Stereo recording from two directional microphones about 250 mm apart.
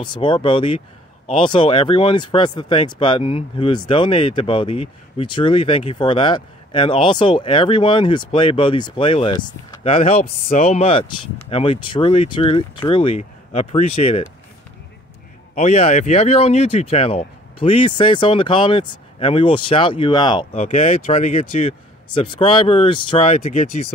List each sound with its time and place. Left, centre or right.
0.0 s speech: centre
15.5 s speech: left